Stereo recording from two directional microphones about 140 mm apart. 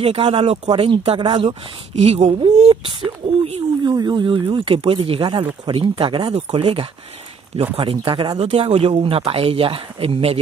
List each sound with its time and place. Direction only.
0.0 s speech: 45° right (ahead or behind)
2.0 s speech: 50° right (ahead or behind)
3.8 s speech: 30° right (ahead or behind)